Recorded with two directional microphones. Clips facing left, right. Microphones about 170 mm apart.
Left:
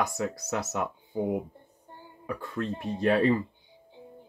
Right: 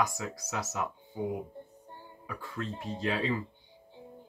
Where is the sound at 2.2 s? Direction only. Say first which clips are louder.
Left 6 dB; 60° left (ahead or behind).